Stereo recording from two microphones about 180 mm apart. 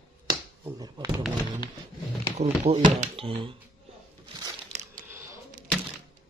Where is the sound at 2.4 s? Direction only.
35° right (ahead or behind).